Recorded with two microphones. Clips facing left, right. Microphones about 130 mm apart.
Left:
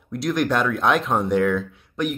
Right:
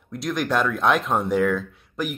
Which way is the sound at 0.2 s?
Centre (ahead or behind).